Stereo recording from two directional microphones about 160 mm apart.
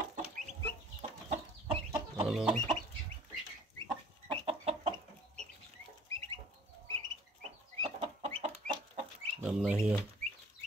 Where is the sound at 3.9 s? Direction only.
35° right (ahead or behind).